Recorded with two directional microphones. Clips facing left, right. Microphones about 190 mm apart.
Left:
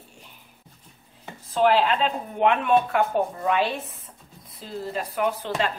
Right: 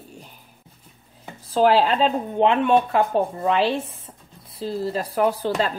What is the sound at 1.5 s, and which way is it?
Speech, 35° right (ahead or behind).